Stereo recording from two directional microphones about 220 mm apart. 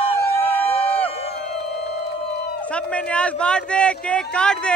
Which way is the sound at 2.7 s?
5° left (ahead or behind).